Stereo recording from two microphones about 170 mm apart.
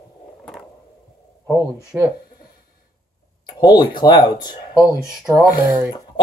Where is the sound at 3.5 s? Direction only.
20° left (ahead or behind).